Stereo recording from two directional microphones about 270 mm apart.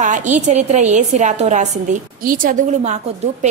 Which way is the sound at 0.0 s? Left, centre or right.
Right.